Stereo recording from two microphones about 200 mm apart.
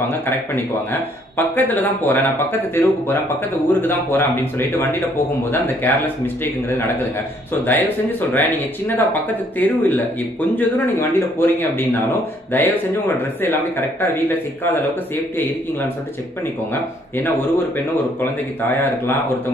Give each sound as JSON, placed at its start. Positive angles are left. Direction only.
{"t": 0.6, "sound": "speech", "side_deg": 10}
{"t": 13.7, "sound": "speech", "side_deg": 10}
{"t": 18.8, "sound": "speech", "side_deg": 10}